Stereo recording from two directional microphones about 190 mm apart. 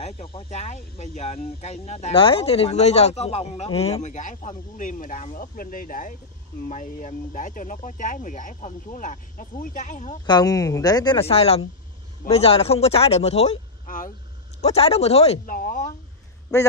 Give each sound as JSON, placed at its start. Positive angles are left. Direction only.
{"t": 0.0, "sound": "speech", "side_deg": 30}
{"t": 10.2, "sound": "a woman's voice", "side_deg": 20}
{"t": 14.6, "sound": "speech", "side_deg": 30}
{"t": 15.4, "sound": "speech", "side_deg": 45}
{"t": 16.5, "sound": "speech", "side_deg": 15}